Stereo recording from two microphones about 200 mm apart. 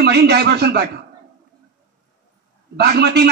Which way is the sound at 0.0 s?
55° right (ahead or behind).